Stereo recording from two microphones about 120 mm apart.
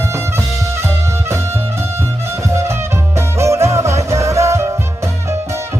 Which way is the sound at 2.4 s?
25° right (ahead or behind).